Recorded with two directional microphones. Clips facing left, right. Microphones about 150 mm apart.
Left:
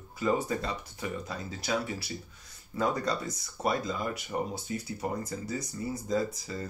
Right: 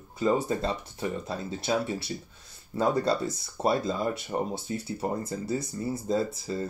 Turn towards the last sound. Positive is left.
turn(degrees=-25)  # may be behind; listen again after turning